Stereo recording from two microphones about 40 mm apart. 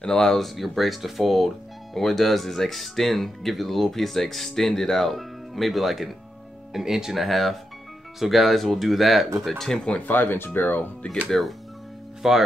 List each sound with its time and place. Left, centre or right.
0.0 s speech: centre
0.6 s speech: centre
9.5 s speech: centre
10.0 s speech: left
11.3 s speech: centre
12.2 s speech: centre